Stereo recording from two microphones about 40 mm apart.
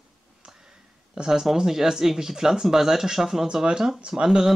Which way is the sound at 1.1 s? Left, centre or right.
Centre.